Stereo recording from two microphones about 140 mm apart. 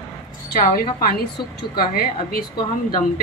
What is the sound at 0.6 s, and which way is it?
A woman's voice, 90° left.